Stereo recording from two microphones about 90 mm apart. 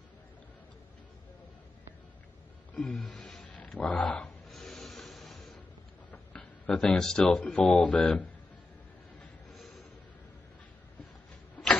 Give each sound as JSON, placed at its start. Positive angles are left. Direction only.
{"t": 2.7, "sound": "a sound", "side_deg": 5}
{"t": 3.0, "sound": "a sound", "side_deg": 15}
{"t": 3.7, "sound": "speech", "side_deg": 15}
{"t": 4.5, "sound": "rub", "side_deg": 0}
{"t": 6.3, "sound": "speech", "side_deg": 10}
{"t": 7.6, "sound": "speech", "side_deg": 15}